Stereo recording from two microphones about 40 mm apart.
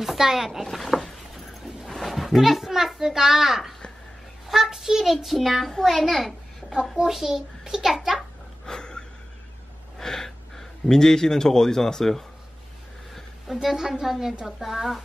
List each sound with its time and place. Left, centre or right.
0.0 s a sound: centre
1.9 s a child's voice: centre
4.6 s child singing: centre
7.1 s a child's voice: centre
8.6 s a sound: centre
9.9 s speech: centre
13.5 s a woman's voice: centre
14.4 s child singing: centre